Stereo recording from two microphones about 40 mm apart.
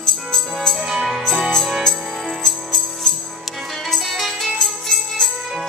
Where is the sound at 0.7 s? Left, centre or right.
Centre.